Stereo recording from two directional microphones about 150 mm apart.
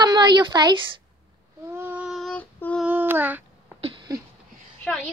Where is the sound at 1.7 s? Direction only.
15° right (ahead or behind).